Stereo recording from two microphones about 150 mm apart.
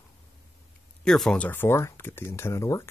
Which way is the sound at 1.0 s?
5° left (ahead or behind).